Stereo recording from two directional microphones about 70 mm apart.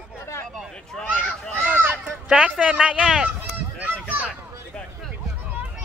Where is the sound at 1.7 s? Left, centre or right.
Right.